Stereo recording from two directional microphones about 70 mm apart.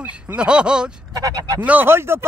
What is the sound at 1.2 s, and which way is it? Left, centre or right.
Speech, right.